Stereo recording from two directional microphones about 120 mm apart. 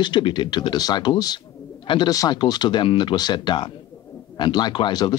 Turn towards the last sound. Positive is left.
turn(degrees=40)  # may be behind; listen again after turning